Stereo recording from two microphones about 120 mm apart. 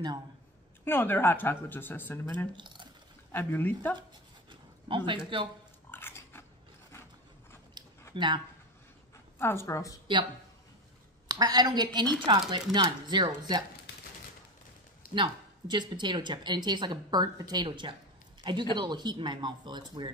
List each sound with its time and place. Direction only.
0.8 s speech: 15° left (ahead or behind)
2.5 s speech: 40° right (ahead or behind)
3.3 s speech: 20° left (ahead or behind)
4.5 s a sound: 45° right (ahead or behind)
5.9 s pig: 20° left (ahead or behind)
8.1 s speech: 45° right (ahead or behind)
9.4 s a woman's voice: 20° left (ahead or behind)
11.2 s a woman's voice: 35° right (ahead or behind)
15.1 s a woman's voice: 40° right (ahead or behind)